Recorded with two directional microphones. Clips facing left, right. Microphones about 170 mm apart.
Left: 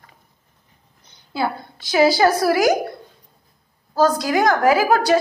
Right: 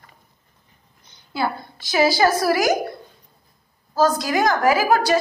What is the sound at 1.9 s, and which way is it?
Speech, 60° left (ahead or behind).